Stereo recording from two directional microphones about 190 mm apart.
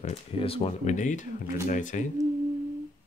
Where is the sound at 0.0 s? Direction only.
30° left (ahead or behind).